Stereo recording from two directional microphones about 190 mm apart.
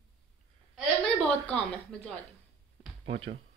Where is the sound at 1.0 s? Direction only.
5° left (ahead or behind).